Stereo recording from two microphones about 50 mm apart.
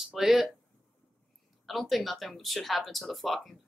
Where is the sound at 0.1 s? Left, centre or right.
Centre.